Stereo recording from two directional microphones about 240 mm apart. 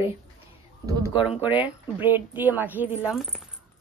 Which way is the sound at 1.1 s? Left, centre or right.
Left.